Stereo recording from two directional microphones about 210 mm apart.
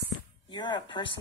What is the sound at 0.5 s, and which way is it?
Speech, 20° left (ahead or behind).